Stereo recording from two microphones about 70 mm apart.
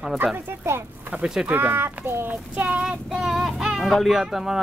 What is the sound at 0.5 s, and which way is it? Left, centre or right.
Speech, right.